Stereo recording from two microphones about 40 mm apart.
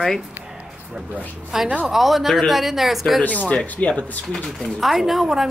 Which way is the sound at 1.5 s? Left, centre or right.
Centre.